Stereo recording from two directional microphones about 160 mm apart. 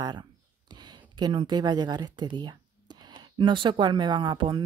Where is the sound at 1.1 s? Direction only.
30° right (ahead or behind).